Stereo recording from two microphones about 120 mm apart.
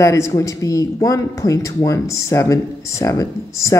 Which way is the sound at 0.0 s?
25° left (ahead or behind).